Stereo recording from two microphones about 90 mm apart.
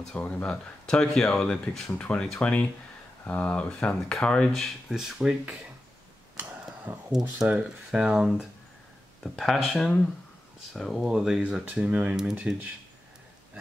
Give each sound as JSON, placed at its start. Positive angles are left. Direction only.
{"t": 0.0, "sound": "speech", "side_deg": 10}
{"t": 6.9, "sound": "speech", "side_deg": -25}
{"t": 9.2, "sound": "speech", "side_deg": 0}
{"t": 12.2, "sound": "speech", "side_deg": -5}